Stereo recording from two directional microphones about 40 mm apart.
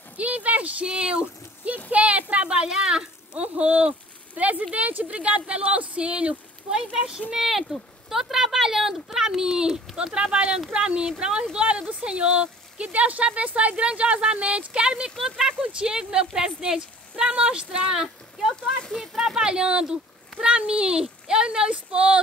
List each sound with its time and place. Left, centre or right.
0.2 s speech: right
0.8 s speech: right
2.7 s speech: centre
3.3 s speech: right
6.7 s speech: centre
15.0 s speech: centre
15.6 s speech: right
18.6 s speech: left
19.1 s speech: centre
19.4 s speech: right